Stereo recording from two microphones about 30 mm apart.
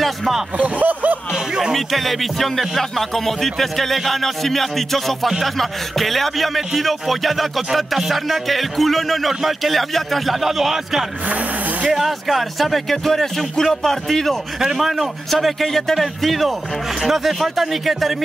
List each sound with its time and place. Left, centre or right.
0.6 s speech: right
1.8 s music: centre
9.3 s music: centre
10.4 s speech: centre
11.9 s music: centre
12.9 s music: centre
14.6 s speech: centre
15.3 s music: centre
17.0 s speech: centre